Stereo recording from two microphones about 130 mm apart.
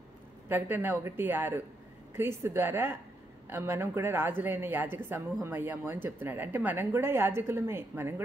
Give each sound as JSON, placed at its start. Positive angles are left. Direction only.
{"t": 0.5, "sound": "a woman's voice", "side_deg": -15}